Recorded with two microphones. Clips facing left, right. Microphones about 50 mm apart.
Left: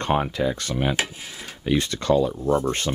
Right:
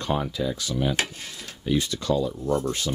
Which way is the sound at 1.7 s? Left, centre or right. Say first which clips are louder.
Left 3 dB; left.